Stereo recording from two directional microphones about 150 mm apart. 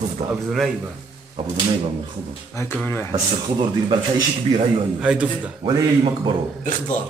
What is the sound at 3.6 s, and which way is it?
Speech, 30° right (ahead or behind).